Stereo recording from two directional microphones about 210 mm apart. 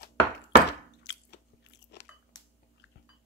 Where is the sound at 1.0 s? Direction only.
55° left (ahead or behind).